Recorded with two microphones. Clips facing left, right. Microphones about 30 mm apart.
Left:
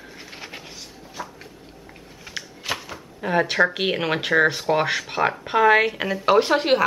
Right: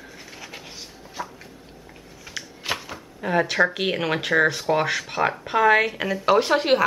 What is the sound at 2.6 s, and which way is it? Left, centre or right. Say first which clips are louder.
Speech: right 1 dB; centre.